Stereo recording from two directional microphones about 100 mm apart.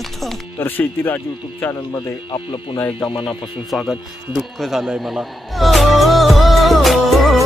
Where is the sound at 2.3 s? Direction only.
60° left (ahead or behind).